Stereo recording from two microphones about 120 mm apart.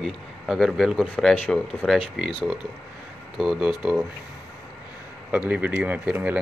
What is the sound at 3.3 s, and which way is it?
Speech, 5° right (ahead or behind).